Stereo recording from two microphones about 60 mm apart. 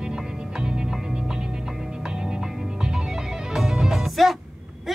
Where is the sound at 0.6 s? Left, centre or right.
Centre.